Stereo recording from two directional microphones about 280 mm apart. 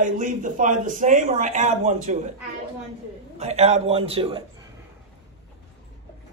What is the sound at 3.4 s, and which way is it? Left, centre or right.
A man's voice, right.